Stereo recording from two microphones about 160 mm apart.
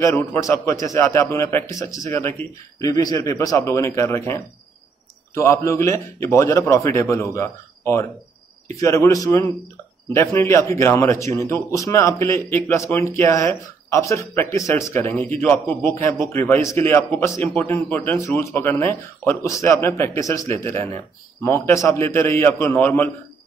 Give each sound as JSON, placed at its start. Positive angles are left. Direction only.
{"t": 0.0, "sound": "a man's voice", "side_deg": 15}